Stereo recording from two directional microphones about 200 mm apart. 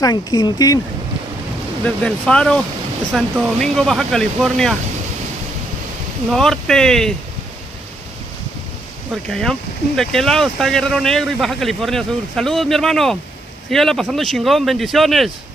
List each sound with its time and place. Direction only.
0.0 s speech: 20° left (ahead or behind)
2.0 s speech: 5° left (ahead or behind)
6.3 s speech: centre (ahead or behind)
9.3 s speech: centre (ahead or behind)